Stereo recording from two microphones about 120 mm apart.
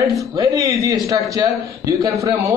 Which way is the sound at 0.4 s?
25° right (ahead or behind).